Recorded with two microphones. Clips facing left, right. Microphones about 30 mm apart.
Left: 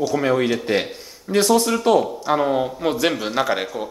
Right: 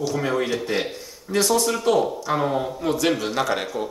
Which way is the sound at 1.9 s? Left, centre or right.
Centre.